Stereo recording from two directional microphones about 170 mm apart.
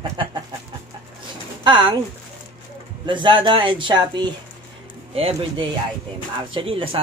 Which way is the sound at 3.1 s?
30° right (ahead or behind).